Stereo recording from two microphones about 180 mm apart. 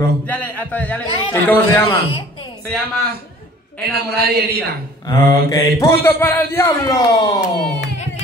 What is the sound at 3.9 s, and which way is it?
Speech, 60° right (ahead or behind).